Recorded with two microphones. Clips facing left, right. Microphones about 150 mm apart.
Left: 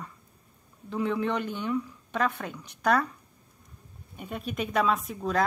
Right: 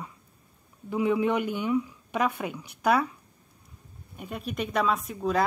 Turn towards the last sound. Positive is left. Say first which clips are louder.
# right 1 dB
turn(degrees=-5)  # may be behind; listen again after turning